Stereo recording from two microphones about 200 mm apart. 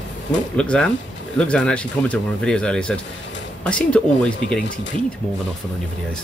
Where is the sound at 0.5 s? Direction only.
5° left (ahead or behind).